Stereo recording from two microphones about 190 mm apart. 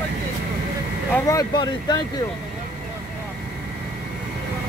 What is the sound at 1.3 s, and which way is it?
Speech, 20° left (ahead or behind).